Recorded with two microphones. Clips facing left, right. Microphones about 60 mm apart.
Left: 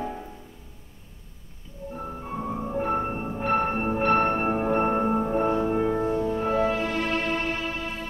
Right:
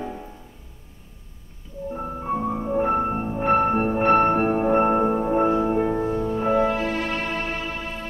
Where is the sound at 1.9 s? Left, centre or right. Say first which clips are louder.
Right 6 dB; right.